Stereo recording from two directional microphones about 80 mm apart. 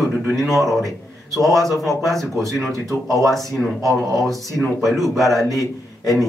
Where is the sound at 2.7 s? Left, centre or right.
Right.